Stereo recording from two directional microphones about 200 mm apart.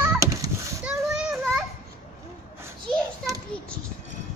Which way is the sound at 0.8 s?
5° right (ahead or behind).